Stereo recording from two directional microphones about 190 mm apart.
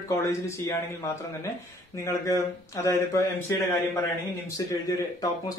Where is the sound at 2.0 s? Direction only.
15° left (ahead or behind).